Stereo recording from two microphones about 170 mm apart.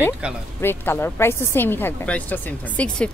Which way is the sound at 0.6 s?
15° left (ahead or behind).